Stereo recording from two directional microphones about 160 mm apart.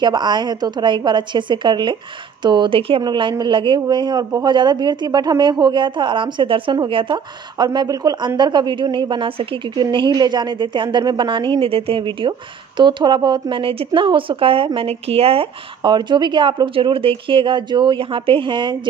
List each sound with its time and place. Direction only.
0.0 s speech: 25° right (ahead or behind)